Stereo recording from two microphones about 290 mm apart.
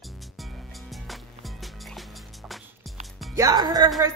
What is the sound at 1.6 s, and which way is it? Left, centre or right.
Music, centre.